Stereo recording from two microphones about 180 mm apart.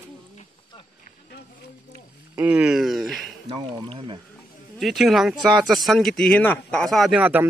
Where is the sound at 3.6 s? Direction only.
30° right (ahead or behind).